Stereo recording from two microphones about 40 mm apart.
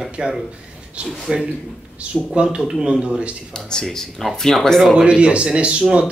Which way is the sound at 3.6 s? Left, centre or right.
Centre.